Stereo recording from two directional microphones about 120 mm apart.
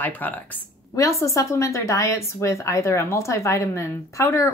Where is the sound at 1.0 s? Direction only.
25° left (ahead or behind).